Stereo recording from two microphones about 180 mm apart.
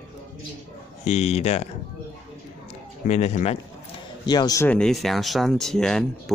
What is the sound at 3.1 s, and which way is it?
Speech, 40° left (ahead or behind).